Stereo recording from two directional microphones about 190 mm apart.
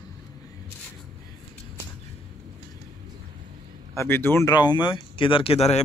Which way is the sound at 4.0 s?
10° left (ahead or behind).